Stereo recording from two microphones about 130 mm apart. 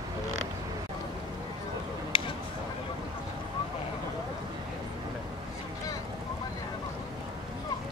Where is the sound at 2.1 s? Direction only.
45° left (ahead or behind).